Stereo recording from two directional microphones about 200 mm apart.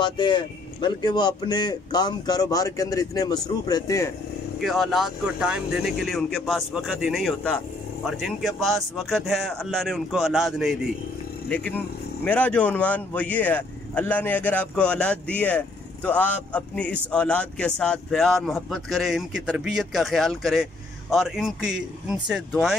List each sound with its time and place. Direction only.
0.0 s a man's voice: 25° left (ahead or behind)
4.6 s speech: centre (ahead or behind)